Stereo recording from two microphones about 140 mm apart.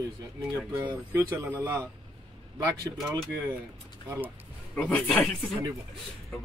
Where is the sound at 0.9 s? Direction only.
25° right (ahead or behind).